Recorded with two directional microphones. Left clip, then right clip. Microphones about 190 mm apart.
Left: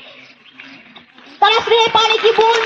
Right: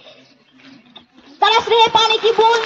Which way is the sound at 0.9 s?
40° left (ahead or behind).